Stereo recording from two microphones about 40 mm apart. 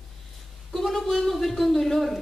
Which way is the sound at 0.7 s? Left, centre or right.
Centre.